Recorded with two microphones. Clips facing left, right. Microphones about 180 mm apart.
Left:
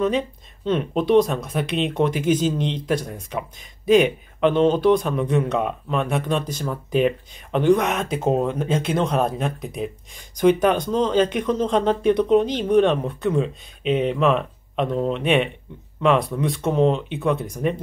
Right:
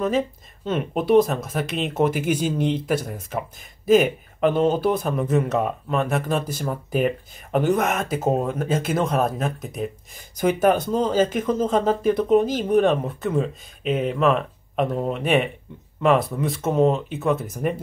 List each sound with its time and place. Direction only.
0.7 s speech: 5° right (ahead or behind)